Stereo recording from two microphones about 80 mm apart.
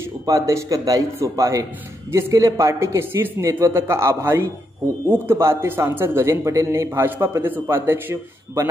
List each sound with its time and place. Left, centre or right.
0.3 s a man's voice: right